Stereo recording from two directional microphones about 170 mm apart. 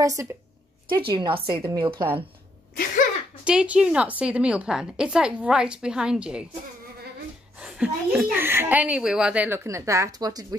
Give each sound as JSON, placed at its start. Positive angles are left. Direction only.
{"t": 0.0, "sound": "a woman's voice", "side_deg": -20}
{"t": 1.1, "sound": "a woman's voice", "side_deg": -30}
{"t": 2.7, "sound": "a sound", "side_deg": 60}
{"t": 3.4, "sound": "a woman's voice", "side_deg": -5}
{"t": 7.5, "sound": "a child's voice", "side_deg": -5}